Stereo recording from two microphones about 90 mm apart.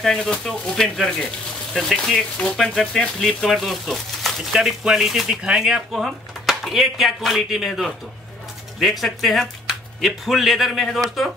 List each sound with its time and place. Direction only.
0.0 s speech: 5° left (ahead or behind)